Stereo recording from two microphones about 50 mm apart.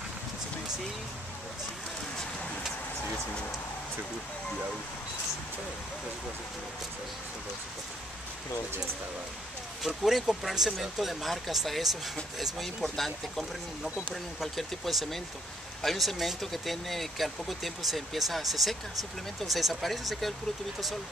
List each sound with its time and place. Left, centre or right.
9.8 s speech: centre